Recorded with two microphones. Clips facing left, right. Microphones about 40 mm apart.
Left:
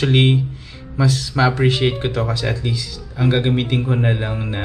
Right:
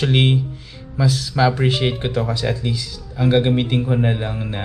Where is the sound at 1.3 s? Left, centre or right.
Centre.